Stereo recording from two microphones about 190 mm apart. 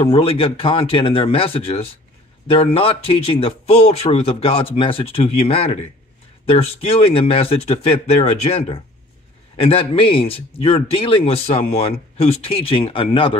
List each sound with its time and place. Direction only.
0.0 s speech: 30° left (ahead or behind)